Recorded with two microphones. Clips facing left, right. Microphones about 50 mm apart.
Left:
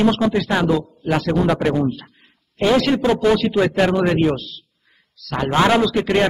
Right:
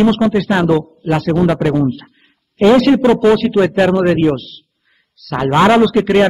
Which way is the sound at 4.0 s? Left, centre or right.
Right.